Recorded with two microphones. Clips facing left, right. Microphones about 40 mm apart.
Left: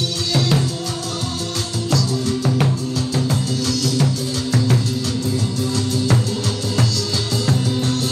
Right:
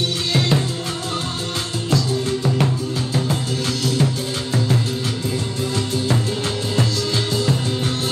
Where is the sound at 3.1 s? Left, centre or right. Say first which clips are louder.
Left 1 dB; right.